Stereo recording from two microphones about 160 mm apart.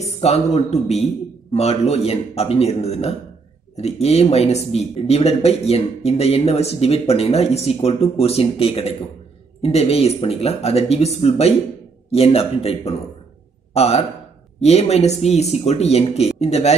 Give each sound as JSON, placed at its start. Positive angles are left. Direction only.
{"t": 0.2, "sound": "speech", "side_deg": 45}